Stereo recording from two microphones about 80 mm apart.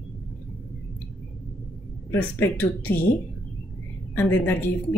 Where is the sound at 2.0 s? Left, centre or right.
Left.